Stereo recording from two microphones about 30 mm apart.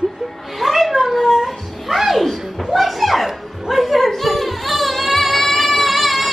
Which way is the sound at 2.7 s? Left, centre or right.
Centre.